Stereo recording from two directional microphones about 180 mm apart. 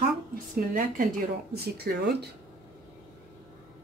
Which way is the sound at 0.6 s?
50° right (ahead or behind).